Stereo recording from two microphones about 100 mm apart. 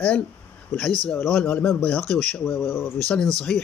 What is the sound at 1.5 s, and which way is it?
Speech, 10° left (ahead or behind).